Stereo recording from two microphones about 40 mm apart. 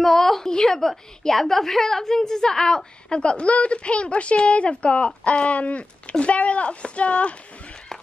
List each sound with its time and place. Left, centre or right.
0.0 s a woman's voice: centre; by 7.3 s left